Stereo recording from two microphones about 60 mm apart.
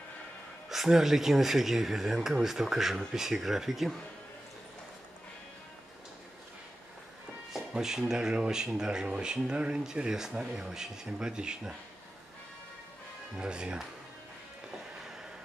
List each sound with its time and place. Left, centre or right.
0.7 s speech: centre
7.7 s speech: centre
13.4 s speech: centre